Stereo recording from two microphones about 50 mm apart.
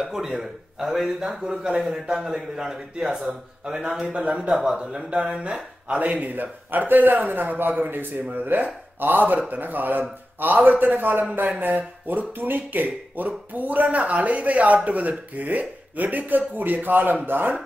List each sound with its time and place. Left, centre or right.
0.0 s a man's voice: centre
1.4 s a man's voice: centre
4.0 s a man's voice: right
6.0 s speech: right